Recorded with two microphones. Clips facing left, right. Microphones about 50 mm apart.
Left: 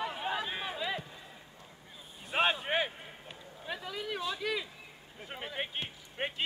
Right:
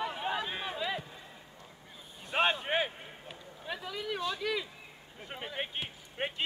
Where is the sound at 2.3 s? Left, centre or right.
Centre.